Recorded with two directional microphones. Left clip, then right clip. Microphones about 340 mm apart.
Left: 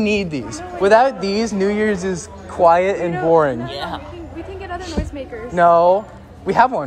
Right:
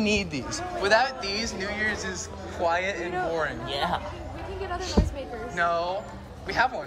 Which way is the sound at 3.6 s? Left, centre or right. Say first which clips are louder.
Left 2 dB; right.